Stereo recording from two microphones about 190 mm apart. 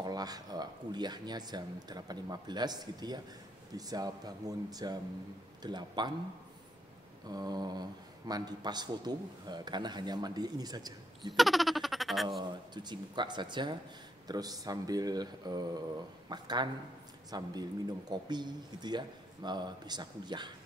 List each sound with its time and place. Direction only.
0.0 s speech: 20° right (ahead or behind)
7.2 s speech: 20° right (ahead or behind)
11.2 s a sound: centre (ahead or behind)
12.4 s speech: 25° right (ahead or behind)